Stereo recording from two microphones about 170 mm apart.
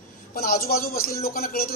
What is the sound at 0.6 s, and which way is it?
A man's voice, 60° left (ahead or behind).